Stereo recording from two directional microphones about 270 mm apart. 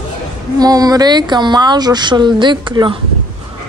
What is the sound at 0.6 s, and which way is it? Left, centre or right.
Speech, centre.